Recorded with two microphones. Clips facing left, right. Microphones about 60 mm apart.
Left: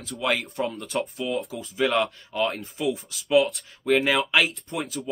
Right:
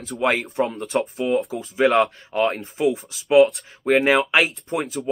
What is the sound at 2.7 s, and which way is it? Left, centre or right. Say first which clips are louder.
Speech: right 6 dB; right.